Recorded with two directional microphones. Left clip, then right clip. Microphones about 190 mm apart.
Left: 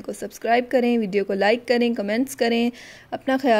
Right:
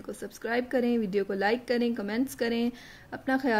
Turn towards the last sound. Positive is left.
turn(degrees=40)  # may be behind; listen again after turning